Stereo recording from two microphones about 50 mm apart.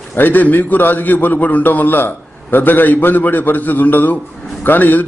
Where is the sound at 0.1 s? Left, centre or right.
Left.